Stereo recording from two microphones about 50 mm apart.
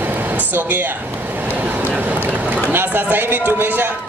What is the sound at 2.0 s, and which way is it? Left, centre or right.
Speech, right.